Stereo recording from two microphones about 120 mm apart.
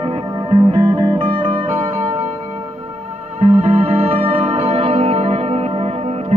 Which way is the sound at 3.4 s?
55° right (ahead or behind).